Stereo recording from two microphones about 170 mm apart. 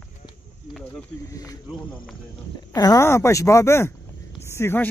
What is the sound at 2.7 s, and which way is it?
Speech, 20° left (ahead or behind).